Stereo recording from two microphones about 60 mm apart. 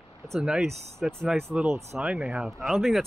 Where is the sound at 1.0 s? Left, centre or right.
Centre.